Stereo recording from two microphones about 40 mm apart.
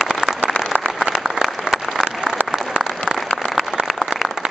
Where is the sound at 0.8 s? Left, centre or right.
Centre.